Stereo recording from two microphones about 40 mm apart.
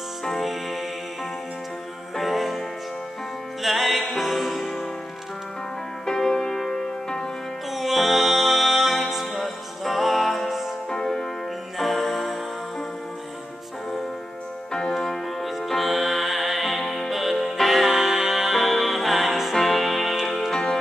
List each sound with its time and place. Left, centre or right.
0.2 s music: centre
2.1 s music: centre
3.6 s music: centre
6.0 s music: centre
7.7 s a capella: centre
10.9 s music: centre
11.8 s music: centre
14.7 s music: centre
15.0 s music: centre
20.5 s music: centre